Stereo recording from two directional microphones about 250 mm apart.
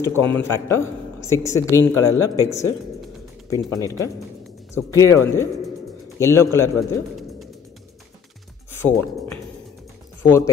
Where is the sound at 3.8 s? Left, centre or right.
Centre.